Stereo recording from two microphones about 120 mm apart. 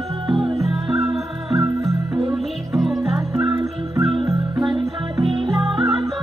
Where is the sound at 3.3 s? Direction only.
15° right (ahead or behind).